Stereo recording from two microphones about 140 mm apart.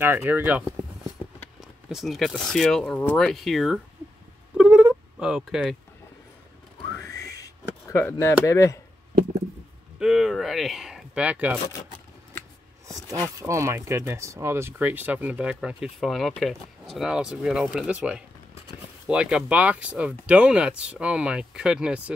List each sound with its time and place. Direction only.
0.0 s speech: 15° right (ahead or behind); by 3.8 s centre (ahead or behind)
4.6 s cat: 5° right (ahead or behind)
7.0 s a sound: 25° left (ahead or behind)
9.9 s speech: 5° right (ahead or behind)
12.8 s wild animals: 25° right (ahead or behind)
13.4 s speech: 20° right (ahead or behind)